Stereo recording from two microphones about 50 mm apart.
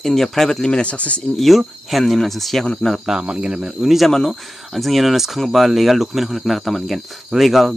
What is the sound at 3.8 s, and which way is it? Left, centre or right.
Speech, centre.